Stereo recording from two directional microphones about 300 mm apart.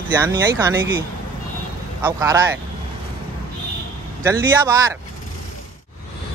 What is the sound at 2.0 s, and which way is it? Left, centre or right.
Speech, centre.